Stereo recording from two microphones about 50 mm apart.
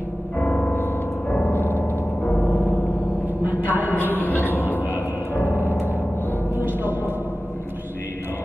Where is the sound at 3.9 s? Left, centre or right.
Left.